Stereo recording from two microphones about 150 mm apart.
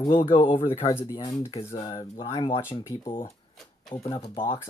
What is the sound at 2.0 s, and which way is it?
Speech, 35° left (ahead or behind).